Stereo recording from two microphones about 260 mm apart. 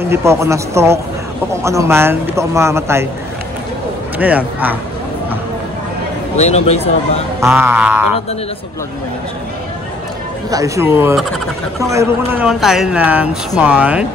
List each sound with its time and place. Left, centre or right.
0.0 s speech: centre
4.2 s speech: centre
6.3 s a man's voice: left
7.3 s speech: centre
10.5 s speech: centre